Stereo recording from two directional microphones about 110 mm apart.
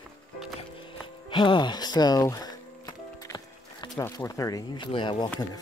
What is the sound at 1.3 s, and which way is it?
Speech, 45° left (ahead or behind).